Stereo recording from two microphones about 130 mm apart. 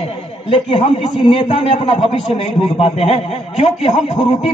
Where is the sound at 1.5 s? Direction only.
50° left (ahead or behind).